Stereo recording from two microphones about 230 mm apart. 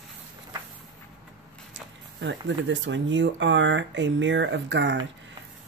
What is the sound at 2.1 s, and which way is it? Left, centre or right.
Speech, right.